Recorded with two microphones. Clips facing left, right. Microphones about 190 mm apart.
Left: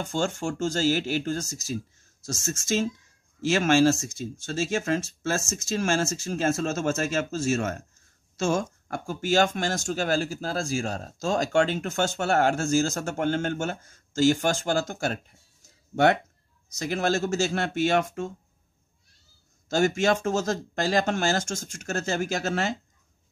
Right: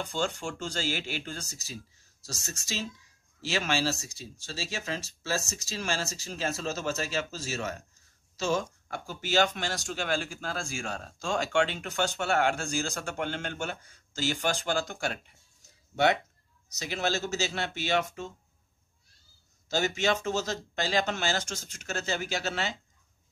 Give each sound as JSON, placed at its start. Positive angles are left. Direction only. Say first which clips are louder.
{"t": 0.0, "sound": "speech", "louder": "left 4 dB", "side_deg": 45}
{"t": 16.6, "sound": "speech", "louder": "left 5 dB", "side_deg": 50}
{"t": 19.7, "sound": "speech", "louder": "left 5 dB", "side_deg": 50}